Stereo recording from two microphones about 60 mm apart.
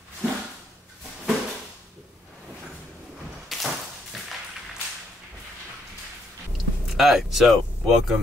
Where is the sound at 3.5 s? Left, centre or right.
Centre.